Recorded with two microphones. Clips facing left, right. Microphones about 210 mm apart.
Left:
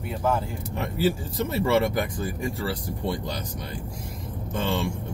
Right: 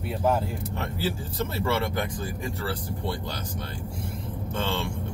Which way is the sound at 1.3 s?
15° left (ahead or behind).